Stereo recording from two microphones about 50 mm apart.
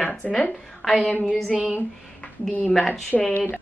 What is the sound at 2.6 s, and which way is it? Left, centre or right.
Speech, centre.